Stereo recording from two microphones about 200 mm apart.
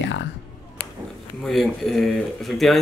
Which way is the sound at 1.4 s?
Centre (ahead or behind).